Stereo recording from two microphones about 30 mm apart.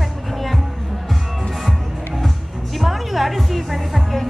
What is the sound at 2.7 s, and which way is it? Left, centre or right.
Music, centre.